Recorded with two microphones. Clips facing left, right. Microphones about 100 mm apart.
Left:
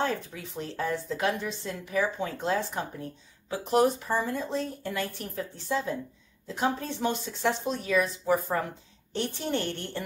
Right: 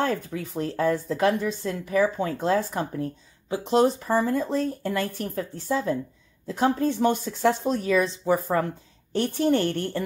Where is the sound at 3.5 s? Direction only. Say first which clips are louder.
Right 3 dB; 25° right (ahead or behind).